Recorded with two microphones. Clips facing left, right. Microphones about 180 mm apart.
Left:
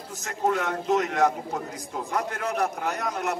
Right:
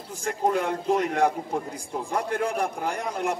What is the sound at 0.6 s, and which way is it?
A man's voice, 30° right (ahead or behind).